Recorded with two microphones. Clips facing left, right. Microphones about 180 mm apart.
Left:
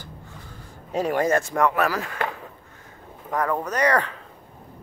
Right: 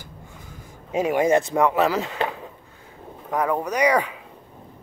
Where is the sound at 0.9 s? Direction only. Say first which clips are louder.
Right 2 dB; 10° right (ahead or behind).